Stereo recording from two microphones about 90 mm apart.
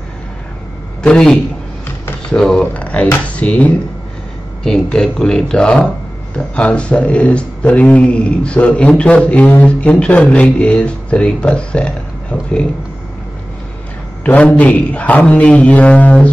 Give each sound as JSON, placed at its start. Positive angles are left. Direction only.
{"t": 1.0, "sound": "speech", "side_deg": 10}
{"t": 2.6, "sound": "a sound", "side_deg": 15}
{"t": 3.3, "sound": "speech", "side_deg": 15}
{"t": 4.8, "sound": "speech", "side_deg": 5}
{"t": 14.2, "sound": "speech", "side_deg": 15}